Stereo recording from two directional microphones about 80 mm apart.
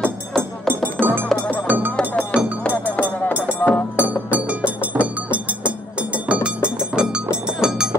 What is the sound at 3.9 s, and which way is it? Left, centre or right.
Music, centre.